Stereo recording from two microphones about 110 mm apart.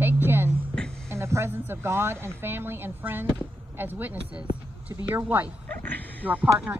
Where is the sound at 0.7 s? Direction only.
5° left (ahead or behind).